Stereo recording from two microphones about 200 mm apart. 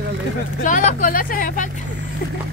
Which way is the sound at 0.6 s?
40° left (ahead or behind).